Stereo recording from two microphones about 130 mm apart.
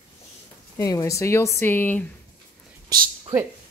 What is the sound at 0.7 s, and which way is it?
Speech, 25° left (ahead or behind).